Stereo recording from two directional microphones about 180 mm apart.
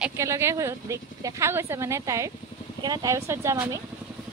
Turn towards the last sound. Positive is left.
turn(degrees=-15)  # may be behind; listen again after turning